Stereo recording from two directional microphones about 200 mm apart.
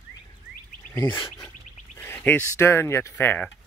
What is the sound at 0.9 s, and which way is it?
Bird, 20° left (ahead or behind).